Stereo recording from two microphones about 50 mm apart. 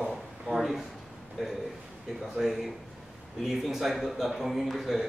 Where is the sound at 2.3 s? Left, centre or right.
Centre.